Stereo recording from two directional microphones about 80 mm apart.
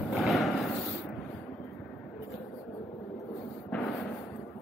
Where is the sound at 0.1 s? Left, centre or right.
Centre.